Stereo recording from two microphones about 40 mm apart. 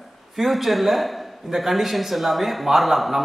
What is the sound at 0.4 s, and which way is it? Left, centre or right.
A man's voice, centre.